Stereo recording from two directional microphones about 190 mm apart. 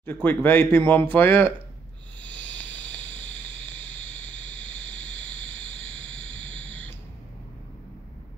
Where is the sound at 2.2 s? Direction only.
5° left (ahead or behind).